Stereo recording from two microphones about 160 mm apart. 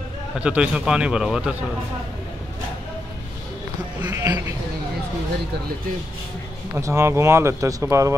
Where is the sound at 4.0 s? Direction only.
15° right (ahead or behind).